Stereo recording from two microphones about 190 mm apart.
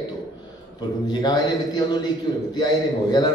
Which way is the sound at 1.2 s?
20° left (ahead or behind).